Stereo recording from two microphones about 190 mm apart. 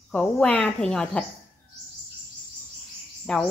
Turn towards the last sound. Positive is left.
turn(degrees=5)  # may be behind; listen again after turning